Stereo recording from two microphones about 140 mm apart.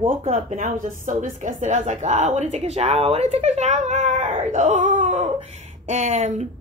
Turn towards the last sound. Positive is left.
turn(degrees=-55)  # may be behind; listen again after turning